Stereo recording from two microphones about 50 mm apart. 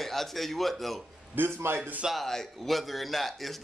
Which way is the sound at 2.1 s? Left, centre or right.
Centre.